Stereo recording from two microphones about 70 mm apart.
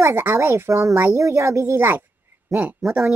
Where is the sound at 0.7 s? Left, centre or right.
Right.